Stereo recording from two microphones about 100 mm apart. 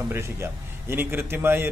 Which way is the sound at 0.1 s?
25° right (ahead or behind).